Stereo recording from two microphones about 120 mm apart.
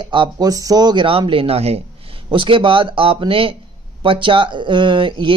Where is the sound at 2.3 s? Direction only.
45° right (ahead or behind).